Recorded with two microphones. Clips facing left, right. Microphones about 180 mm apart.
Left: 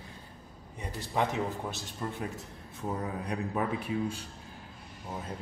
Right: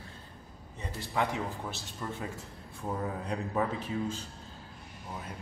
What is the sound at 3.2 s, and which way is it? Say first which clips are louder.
A man's voice: right 1 dB; 15° left (ahead or behind).